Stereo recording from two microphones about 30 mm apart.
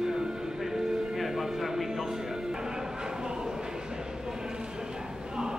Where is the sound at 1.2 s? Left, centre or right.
Centre; by 5.5 s right.